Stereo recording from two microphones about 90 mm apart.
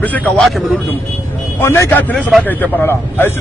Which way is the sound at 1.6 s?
25° left (ahead or behind).